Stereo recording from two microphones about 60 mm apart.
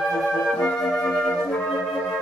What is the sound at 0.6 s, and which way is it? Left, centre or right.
Flute, left.